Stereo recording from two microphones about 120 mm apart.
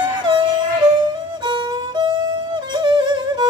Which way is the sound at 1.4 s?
40° right (ahead or behind).